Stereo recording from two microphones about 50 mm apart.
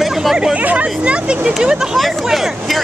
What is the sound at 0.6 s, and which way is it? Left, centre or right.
Speech, right.